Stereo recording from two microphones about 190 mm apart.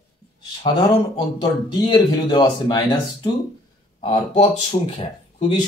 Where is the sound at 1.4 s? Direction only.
25° left (ahead or behind).